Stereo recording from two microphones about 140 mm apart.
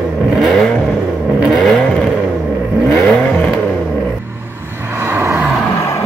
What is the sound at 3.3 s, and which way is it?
Vehicle, 5° left (ahead or behind).